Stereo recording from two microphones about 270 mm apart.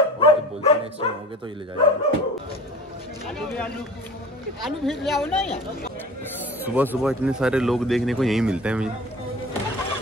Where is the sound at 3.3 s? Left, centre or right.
Centre.